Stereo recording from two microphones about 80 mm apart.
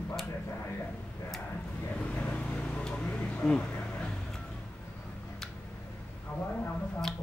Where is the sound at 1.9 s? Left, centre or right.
Centre.